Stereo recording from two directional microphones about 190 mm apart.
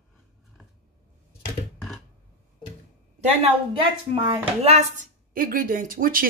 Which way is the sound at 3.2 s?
30° right (ahead or behind).